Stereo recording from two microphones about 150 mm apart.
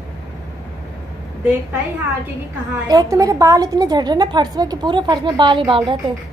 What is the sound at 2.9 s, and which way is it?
A woman's voice, 25° right (ahead or behind).